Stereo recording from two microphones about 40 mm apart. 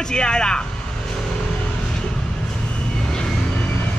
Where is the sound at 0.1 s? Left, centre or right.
Left.